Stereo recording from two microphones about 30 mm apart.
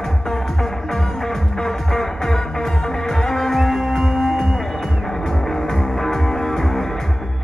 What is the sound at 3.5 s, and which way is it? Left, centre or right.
Music, centre.